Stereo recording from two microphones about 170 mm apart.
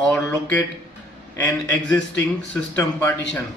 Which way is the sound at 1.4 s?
10° left (ahead or behind).